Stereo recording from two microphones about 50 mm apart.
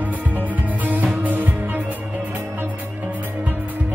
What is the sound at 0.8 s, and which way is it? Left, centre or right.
Music, right.